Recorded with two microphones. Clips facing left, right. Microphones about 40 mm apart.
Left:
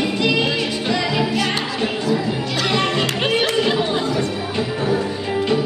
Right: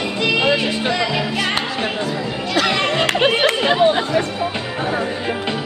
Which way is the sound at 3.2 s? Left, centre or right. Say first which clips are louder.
Right 2 dB; right.